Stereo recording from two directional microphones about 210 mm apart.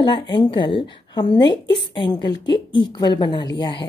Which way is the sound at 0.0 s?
20° left (ahead or behind).